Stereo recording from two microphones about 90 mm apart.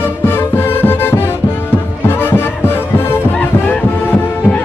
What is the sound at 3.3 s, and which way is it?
Music, 15° left (ahead or behind).